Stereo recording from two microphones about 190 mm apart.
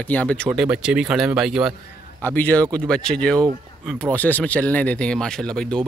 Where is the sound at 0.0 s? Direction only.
5° left (ahead or behind).